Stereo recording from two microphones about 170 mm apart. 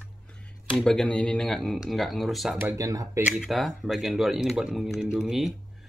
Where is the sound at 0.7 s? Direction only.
5° left (ahead or behind).